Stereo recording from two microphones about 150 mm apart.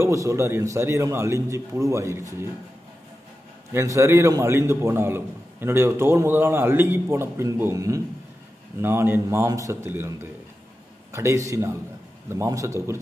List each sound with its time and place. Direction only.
0.0 s a man's voice: 20° right (ahead or behind)
3.7 s a man's voice: 20° right (ahead or behind)